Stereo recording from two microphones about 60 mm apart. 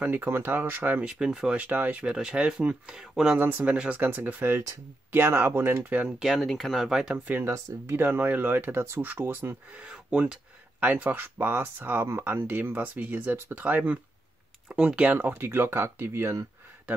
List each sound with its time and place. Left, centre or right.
0.0 s speech: right
1.0 s speech: centre
1.7 s speech: right
2.0 s speech: centre
3.3 s speech: right
3.7 s speech: centre
4.0 s speech: right
6.0 s speech: centre
6.8 s speech: centre
7.4 s speech: right
7.9 s speech: right
9.7 s speech: centre
15.1 s speech: right